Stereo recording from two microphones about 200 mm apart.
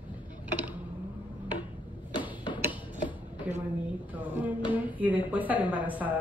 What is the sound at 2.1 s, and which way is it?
Tick-tock, 25° left (ahead or behind).